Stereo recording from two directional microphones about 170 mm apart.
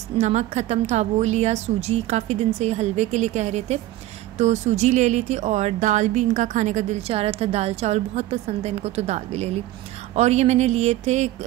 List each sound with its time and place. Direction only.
0.2 s a woman's voice: 40° right (ahead or behind)